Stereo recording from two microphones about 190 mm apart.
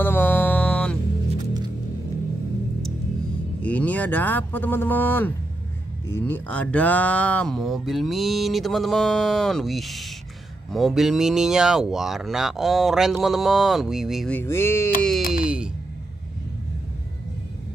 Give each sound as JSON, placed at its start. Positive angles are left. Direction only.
{"t": 0.0, "sound": "music", "side_deg": 10}
{"t": 1.4, "sound": "music", "side_deg": -20}
{"t": 3.6, "sound": "speech", "side_deg": 10}
{"t": 15.3, "sound": "a sound", "side_deg": -5}